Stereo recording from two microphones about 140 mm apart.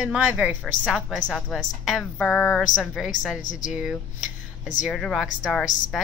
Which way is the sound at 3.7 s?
5° right (ahead or behind).